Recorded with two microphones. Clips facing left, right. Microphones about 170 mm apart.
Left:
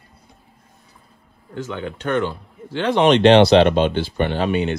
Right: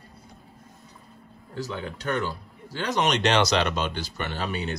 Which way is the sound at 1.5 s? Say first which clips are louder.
Left 5 dB; 35° right (ahead or behind).